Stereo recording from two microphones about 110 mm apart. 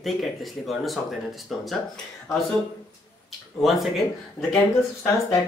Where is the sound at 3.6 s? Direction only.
Centre (ahead or behind).